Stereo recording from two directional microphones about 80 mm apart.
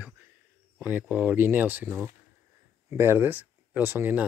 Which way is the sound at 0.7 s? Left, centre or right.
Right.